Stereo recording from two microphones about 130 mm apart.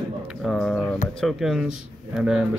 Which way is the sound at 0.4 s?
Centre (ahead or behind).